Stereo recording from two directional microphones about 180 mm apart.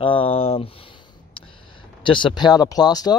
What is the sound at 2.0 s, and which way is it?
Speech, 25° left (ahead or behind).